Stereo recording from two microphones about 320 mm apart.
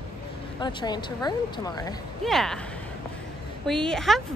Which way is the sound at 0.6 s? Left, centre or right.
Centre.